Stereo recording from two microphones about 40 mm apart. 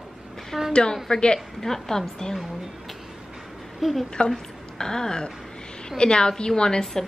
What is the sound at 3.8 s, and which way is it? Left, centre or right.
Speech, centre.